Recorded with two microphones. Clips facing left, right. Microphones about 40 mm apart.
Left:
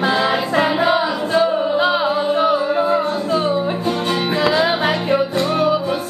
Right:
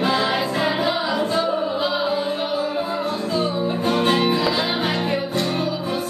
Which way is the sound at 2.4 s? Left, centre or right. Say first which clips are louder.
Left 7 dB; left.